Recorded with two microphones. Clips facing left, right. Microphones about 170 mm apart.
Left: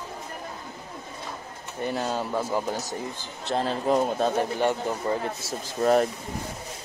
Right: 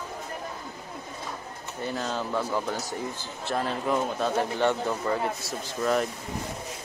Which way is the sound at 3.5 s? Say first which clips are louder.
Left 3 dB; 30° left (ahead or behind).